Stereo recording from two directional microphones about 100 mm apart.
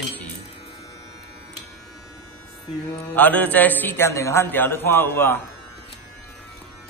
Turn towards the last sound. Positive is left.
turn(degrees=25)  # may be behind; listen again after turning